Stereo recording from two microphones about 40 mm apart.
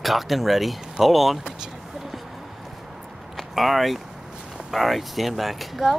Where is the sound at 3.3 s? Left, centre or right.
Centre.